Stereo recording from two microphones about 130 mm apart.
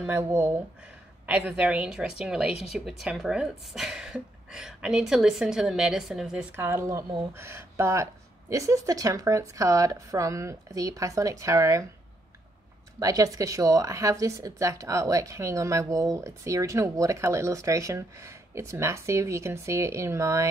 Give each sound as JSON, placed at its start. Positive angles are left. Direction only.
{"t": 0.0, "sound": "a woman's voice", "side_deg": -20}
{"t": 6.5, "sound": "speech", "side_deg": -20}
{"t": 13.0, "sound": "speech", "side_deg": -25}